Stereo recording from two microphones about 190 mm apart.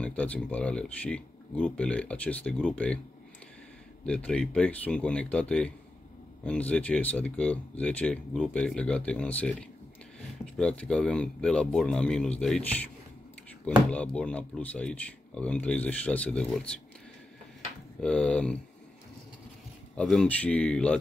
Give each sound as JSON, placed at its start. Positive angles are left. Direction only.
{"t": 0.0, "sound": "speech", "side_deg": 5}
{"t": 4.0, "sound": "speech", "side_deg": 5}
{"t": 18.0, "sound": "speech", "side_deg": 5}
{"t": 20.0, "sound": "speech", "side_deg": 5}